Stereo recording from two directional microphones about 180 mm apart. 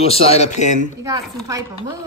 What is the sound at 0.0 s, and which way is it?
Speech, 35° left (ahead or behind).